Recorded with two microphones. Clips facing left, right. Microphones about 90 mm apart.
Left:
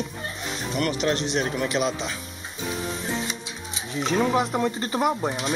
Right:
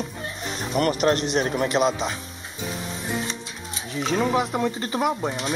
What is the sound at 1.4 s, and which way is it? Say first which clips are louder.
Speech: right 3 dB; 35° right (ahead or behind).